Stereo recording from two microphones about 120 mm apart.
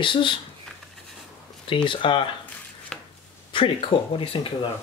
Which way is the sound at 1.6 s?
45° left (ahead or behind).